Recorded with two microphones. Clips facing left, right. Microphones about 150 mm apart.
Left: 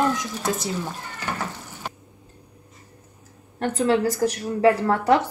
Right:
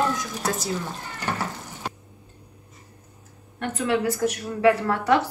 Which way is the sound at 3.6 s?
35° left (ahead or behind).